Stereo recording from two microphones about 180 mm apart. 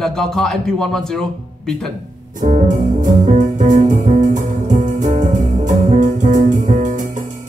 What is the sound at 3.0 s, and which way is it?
Music, 50° right (ahead or behind).